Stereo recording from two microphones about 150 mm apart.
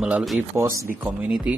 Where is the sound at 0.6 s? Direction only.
20° right (ahead or behind).